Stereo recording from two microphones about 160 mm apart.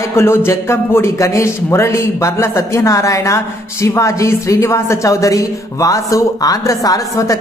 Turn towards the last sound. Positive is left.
turn(degrees=20)  # may be behind; listen again after turning